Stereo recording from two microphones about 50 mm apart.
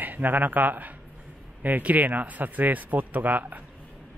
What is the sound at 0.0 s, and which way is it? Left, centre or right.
A man's voice, right.